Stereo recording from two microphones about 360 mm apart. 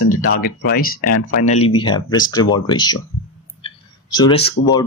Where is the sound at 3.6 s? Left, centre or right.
Centre.